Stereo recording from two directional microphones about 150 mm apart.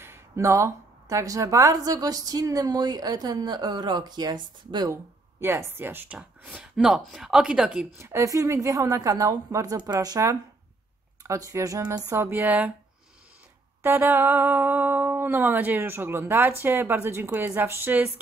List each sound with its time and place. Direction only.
0.0 s a woman's voice: 20° right (ahead or behind)
5.4 s speech: 15° right (ahead or behind)
6.1 s speech: 5° right (ahead or behind)
8.0 s a woman's voice: 20° right (ahead or behind)
13.8 s speech: 15° right (ahead or behind)